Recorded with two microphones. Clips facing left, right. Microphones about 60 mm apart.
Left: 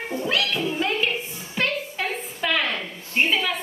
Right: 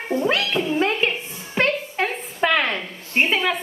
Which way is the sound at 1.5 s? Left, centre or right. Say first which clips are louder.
Right 5 dB; right.